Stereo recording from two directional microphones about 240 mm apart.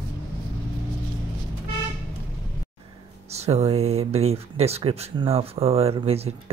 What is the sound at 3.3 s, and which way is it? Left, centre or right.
Speech, right.